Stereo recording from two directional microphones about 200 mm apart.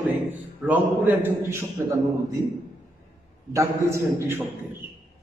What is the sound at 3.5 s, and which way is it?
A man's voice, 15° right (ahead or behind).